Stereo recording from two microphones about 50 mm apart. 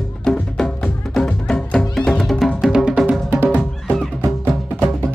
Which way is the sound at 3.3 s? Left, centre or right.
Right.